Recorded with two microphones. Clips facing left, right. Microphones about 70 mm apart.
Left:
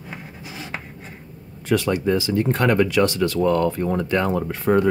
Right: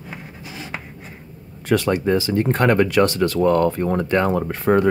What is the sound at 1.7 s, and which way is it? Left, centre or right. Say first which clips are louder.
Speech: right 2 dB; right.